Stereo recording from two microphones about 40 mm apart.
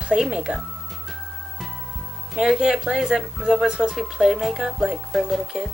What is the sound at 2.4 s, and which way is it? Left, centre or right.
Speech, centre.